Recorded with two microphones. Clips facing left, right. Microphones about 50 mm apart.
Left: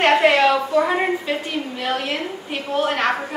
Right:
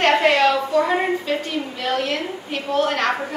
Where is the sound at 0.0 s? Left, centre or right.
Centre.